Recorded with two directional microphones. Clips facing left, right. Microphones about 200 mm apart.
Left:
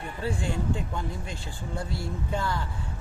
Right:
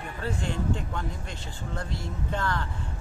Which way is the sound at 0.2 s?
10° left (ahead or behind).